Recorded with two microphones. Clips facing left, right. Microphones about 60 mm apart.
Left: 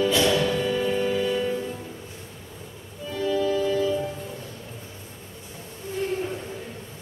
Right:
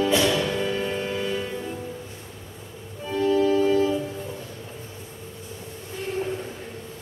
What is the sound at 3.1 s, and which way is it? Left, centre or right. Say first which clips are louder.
Organ: right 4 dB; right.